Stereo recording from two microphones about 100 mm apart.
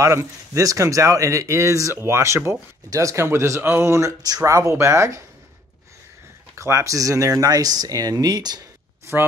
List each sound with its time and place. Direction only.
0.0 s speech: 30° right (ahead or behind)
6.5 s speech: 30° right (ahead or behind)